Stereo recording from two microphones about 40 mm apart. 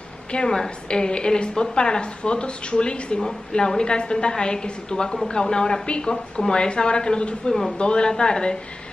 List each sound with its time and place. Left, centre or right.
0.3 s a woman's voice: centre